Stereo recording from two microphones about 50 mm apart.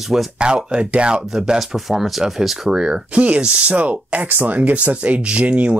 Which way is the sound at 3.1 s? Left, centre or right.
Right.